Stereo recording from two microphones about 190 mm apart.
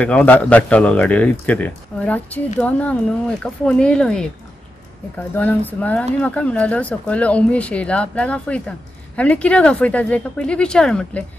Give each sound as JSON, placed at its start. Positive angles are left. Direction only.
{"t": 0.0, "sound": "speech", "side_deg": 5}